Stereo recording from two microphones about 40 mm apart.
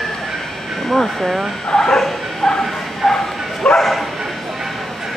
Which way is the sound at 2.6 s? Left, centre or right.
Centre.